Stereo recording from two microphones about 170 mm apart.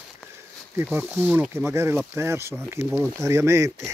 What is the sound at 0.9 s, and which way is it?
Speech, 10° right (ahead or behind).